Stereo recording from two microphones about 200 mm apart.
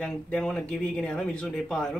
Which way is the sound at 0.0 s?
5° left (ahead or behind).